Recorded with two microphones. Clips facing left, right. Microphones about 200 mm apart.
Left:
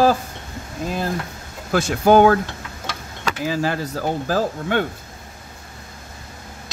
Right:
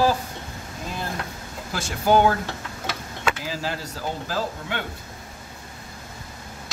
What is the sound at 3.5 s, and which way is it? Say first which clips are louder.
Speech: left 8 dB; 55° left (ahead or behind).